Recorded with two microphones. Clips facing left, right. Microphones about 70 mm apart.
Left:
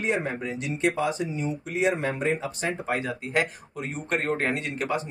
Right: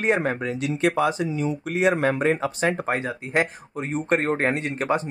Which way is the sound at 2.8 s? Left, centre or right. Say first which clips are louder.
Right 2 dB; right.